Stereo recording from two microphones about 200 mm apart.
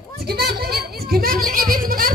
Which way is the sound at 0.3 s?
50° right (ahead or behind).